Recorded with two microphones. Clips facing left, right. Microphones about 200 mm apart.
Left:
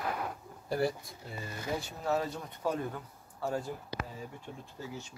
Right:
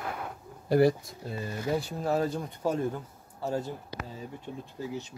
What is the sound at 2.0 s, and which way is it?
Speech, 35° right (ahead or behind).